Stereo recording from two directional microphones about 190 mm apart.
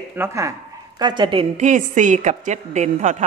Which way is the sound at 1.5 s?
40° right (ahead or behind).